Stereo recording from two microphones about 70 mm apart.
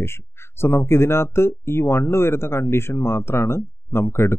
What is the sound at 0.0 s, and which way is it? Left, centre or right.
Speech, left.